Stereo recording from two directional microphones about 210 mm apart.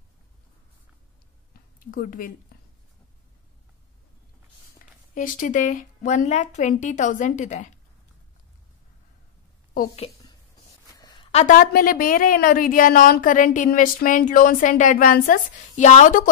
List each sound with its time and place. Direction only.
1.8 s speech: 40° left (ahead or behind)
5.1 s a woman's voice: 40° left (ahead or behind)
10.9 s a sound: 20° left (ahead or behind)
11.3 s a woman's voice: 40° left (ahead or behind)